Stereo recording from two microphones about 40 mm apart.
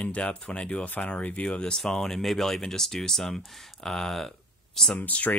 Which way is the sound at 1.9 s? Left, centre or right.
Centre.